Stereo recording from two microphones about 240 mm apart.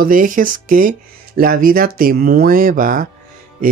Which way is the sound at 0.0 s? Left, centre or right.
Right.